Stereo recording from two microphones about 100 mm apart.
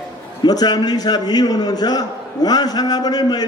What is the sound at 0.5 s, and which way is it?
A man's voice, 40° left (ahead or behind).